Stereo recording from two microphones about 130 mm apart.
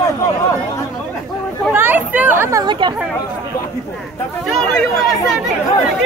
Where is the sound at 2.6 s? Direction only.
35° right (ahead or behind).